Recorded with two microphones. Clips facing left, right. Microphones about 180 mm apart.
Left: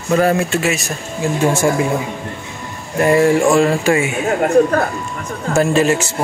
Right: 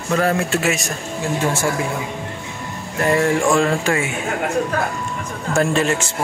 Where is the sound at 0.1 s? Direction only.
10° left (ahead or behind).